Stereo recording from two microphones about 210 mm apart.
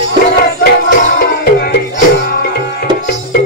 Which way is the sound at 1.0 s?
45° left (ahead or behind).